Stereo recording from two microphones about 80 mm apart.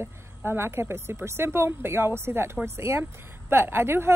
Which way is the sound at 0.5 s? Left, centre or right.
Right.